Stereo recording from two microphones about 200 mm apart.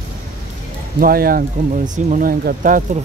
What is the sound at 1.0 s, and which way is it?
Speech, 45° right (ahead or behind).